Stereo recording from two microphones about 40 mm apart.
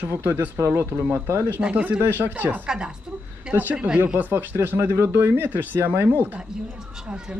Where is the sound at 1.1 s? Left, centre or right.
Right.